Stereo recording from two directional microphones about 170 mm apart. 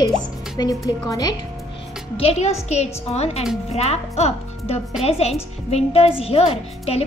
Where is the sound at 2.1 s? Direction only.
35° left (ahead or behind).